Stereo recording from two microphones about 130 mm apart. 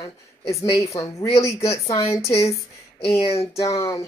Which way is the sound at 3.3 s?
50° left (ahead or behind).